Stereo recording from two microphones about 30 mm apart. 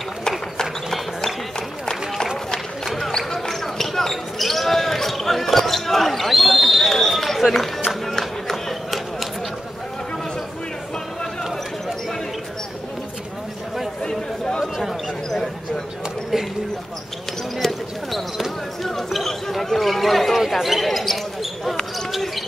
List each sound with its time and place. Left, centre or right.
3.1 s basketball bounce: centre
7.9 s music: centre
14.0 s chatter: left
17.6 s basketball bounce: centre